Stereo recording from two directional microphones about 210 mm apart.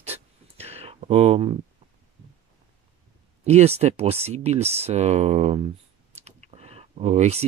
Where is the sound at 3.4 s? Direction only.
30° right (ahead or behind).